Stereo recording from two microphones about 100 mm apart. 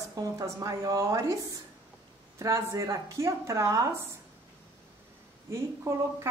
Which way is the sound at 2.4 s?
30° right (ahead or behind).